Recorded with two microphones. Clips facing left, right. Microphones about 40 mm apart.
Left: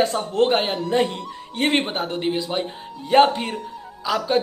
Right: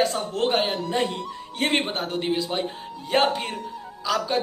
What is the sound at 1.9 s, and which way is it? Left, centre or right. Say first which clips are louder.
A man's voice: left 2 dB; centre.